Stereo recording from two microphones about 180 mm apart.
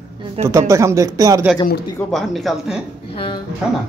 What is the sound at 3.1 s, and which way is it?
Speech, 30° left (ahead or behind).